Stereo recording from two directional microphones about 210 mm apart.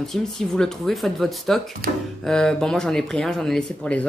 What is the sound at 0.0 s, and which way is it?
A woman's voice, centre (ahead or behind).